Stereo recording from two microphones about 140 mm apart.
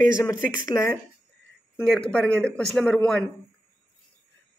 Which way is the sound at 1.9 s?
5° left (ahead or behind).